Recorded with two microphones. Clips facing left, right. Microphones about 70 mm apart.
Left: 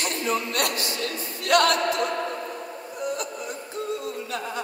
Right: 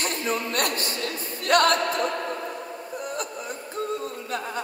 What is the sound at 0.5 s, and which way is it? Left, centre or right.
A capella, right.